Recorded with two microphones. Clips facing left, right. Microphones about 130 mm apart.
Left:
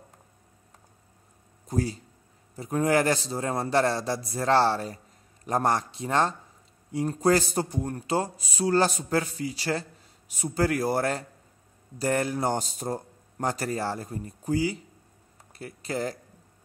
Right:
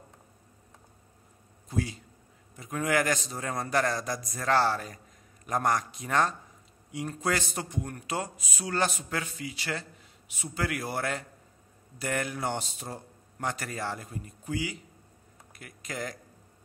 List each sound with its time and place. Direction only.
1.7 s a man's voice: 40° left (ahead or behind)